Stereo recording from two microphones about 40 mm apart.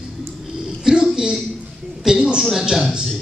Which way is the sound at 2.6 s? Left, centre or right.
Centre.